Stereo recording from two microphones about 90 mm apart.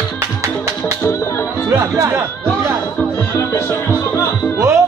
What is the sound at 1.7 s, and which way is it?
Speech, 35° right (ahead or behind).